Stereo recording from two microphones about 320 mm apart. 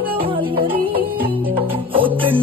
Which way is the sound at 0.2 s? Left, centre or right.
Centre.